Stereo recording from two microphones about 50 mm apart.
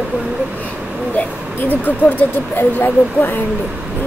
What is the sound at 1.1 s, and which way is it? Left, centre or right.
Speech, left.